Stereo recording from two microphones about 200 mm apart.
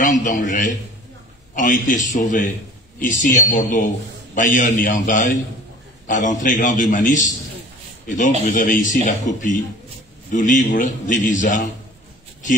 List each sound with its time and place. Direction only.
0.0 s a man's voice: 40° left (ahead or behind)
8.4 s a man's voice: 40° left (ahead or behind)